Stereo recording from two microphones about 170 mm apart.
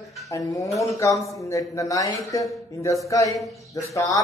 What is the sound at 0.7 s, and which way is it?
Speech, 20° left (ahead or behind).